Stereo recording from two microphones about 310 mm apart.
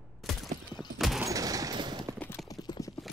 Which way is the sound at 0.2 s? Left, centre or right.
Centre.